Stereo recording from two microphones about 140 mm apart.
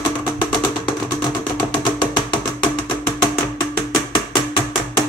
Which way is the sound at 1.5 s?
35° left (ahead or behind).